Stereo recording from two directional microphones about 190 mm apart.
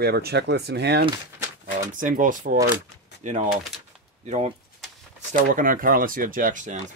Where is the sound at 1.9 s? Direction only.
45° right (ahead or behind).